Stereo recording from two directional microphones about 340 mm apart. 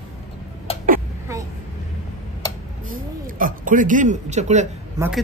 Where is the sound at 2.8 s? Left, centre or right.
Right.